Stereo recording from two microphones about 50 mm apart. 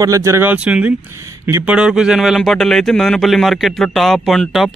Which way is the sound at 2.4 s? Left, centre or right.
Centre.